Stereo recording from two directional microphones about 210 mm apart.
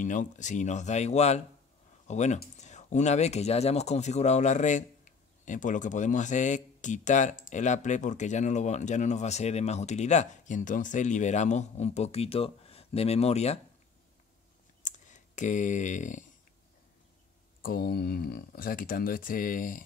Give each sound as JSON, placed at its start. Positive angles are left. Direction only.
{"t": 0.0, "sound": "speech", "side_deg": 35}
{"t": 14.8, "sound": "clicking", "side_deg": 35}
{"t": 17.6, "sound": "speech", "side_deg": 45}